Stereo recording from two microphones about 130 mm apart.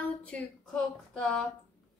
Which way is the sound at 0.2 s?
10° left (ahead or behind).